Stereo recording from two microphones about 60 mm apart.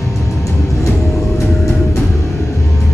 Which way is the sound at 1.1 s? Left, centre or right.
Left.